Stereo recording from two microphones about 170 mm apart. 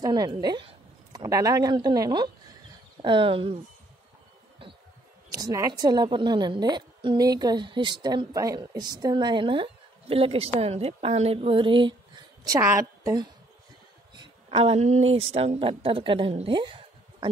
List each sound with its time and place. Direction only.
0.0 s a woman's voice: 25° right (ahead or behind)
5.3 s a woman's voice: 20° right (ahead or behind)